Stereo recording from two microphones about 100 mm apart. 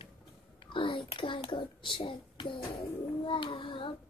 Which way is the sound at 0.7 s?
55° left (ahead or behind).